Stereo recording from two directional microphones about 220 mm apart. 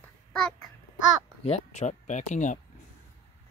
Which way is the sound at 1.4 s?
30° left (ahead or behind).